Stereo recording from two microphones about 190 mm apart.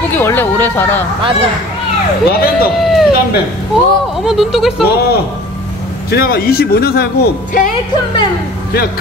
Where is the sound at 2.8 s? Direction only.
Centre (ahead or behind).